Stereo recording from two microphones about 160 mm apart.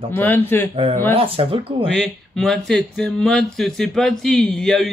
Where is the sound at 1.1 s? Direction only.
35° right (ahead or behind).